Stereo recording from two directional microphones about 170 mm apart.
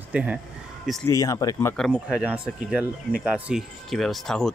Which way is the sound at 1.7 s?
Centre (ahead or behind).